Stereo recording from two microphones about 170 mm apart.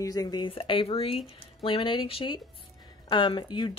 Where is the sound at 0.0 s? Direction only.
20° left (ahead or behind).